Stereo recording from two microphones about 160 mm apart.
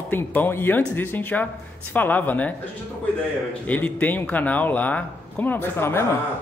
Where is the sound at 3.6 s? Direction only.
10° left (ahead or behind).